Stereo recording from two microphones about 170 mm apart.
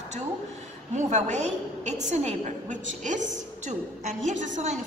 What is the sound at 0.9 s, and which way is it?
A woman's voice, 45° right (ahead or behind).